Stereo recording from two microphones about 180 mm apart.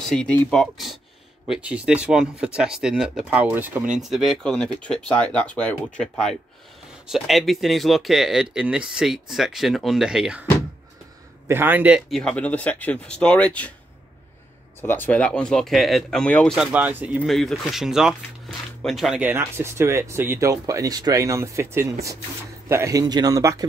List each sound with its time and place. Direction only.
0.1 s speech: 5° left (ahead or behind)
11.4 s speech: 10° right (ahead or behind)
12.2 s speech: 5° left (ahead or behind)
14.8 s speech: 10° left (ahead or behind)
16.5 s speech: 10° right (ahead or behind)